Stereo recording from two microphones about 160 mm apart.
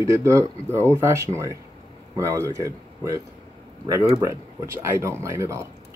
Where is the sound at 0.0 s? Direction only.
20° right (ahead or behind).